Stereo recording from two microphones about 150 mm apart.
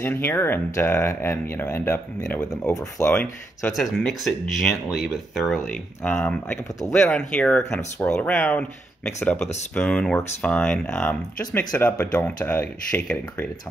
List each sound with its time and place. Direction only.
0.0 s speech: 15° left (ahead or behind)
5.6 s speech: 15° left (ahead or behind)